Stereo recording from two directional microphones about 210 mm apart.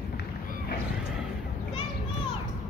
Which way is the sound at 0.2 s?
45° left (ahead or behind).